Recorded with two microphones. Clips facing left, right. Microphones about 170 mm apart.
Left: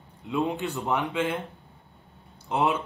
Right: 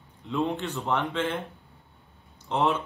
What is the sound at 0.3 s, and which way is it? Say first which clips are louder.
Speech: left 1 dB; 15° left (ahead or behind).